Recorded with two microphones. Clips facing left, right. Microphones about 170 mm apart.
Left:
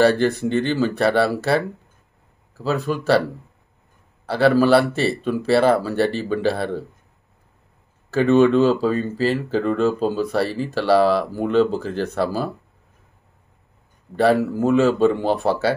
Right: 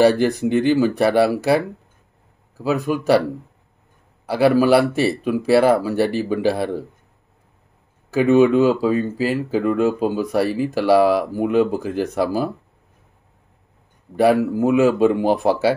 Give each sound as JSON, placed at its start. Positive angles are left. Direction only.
{"t": 0.0, "sound": "speech", "side_deg": -15}
{"t": 2.6, "sound": "speech", "side_deg": -10}
{"t": 4.3, "sound": "speech", "side_deg": -10}
{"t": 8.1, "sound": "speech", "side_deg": -10}
{"t": 14.1, "sound": "speech", "side_deg": -10}